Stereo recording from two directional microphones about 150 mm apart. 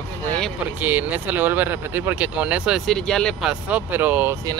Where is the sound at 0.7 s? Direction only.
10° right (ahead or behind).